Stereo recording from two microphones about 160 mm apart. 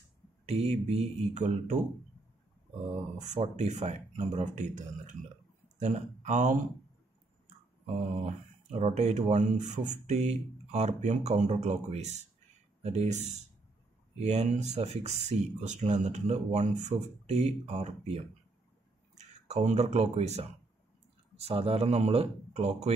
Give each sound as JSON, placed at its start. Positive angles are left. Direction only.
{"t": 0.5, "sound": "speech", "side_deg": -40}
{"t": 3.2, "sound": "speech", "side_deg": -45}
{"t": 7.8, "sound": "speech", "side_deg": -45}